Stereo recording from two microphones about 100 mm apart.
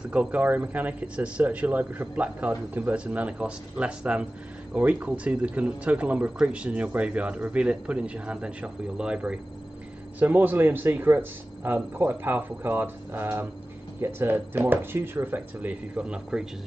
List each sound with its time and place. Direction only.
0.1 s speech: 15° right (ahead or behind)